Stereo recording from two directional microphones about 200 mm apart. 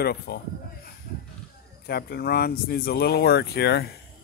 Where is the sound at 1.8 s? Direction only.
50° left (ahead or behind).